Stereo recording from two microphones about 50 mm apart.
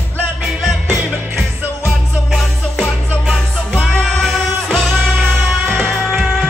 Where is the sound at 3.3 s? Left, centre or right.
Centre.